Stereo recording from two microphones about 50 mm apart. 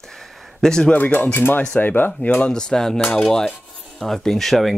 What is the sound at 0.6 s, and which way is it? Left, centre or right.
Cutlery, centre.